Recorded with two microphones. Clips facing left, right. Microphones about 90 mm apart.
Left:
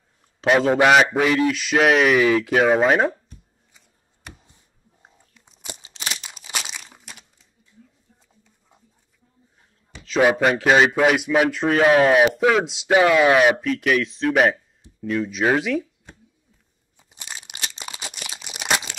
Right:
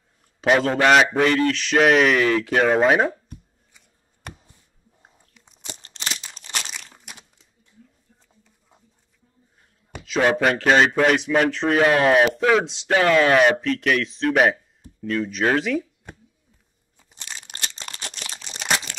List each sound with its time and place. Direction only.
0.4 s a man's voice: centre (ahead or behind)
5.3 s biting: centre (ahead or behind)
5.9 s crumpling: 5° left (ahead or behind)
10.2 s speech: 5° left (ahead or behind)
16.9 s crumpling: 10° left (ahead or behind)